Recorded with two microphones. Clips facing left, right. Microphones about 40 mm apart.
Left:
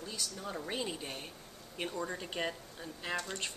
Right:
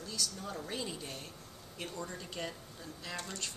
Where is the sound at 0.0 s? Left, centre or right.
Centre.